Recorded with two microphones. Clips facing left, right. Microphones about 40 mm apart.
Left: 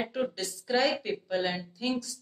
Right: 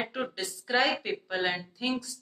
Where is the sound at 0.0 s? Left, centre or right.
Right.